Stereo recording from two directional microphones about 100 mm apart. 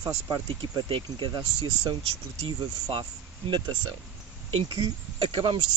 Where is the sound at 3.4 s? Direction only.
55° right (ahead or behind).